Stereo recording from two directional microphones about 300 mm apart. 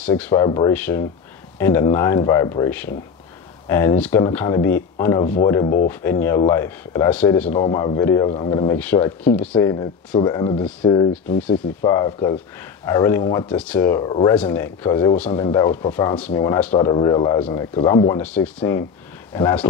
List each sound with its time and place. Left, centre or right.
0.0 s speech: centre
5.2 s speech: left
5.5 s speech: centre